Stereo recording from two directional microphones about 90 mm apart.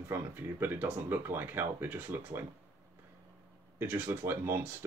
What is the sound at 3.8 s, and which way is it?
Speech, 20° right (ahead or behind).